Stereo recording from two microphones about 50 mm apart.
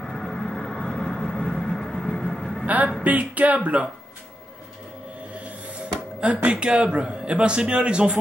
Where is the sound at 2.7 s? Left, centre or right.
Right.